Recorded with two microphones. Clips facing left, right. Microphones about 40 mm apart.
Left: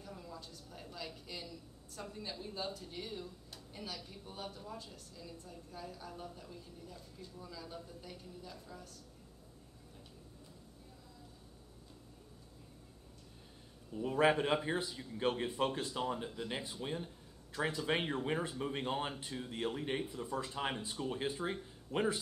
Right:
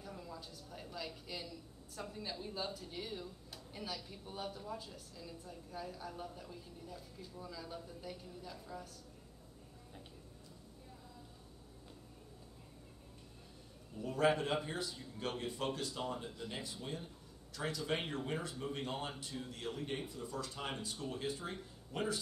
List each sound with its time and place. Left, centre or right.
0.0 s a sound: centre
3.7 s a woman's voice: centre
13.9 s speech: left